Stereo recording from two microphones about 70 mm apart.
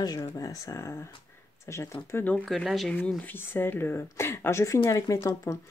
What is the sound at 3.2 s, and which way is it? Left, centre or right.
A woman's voice, left.